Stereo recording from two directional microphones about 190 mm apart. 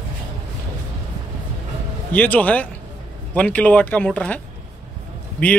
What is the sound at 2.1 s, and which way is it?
Speech, 10° left (ahead or behind).